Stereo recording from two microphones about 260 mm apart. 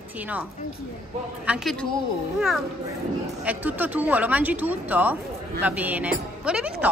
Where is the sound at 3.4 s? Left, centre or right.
Centre.